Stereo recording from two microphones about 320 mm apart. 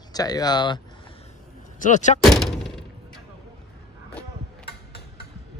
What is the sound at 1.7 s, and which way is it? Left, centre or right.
Speech, left.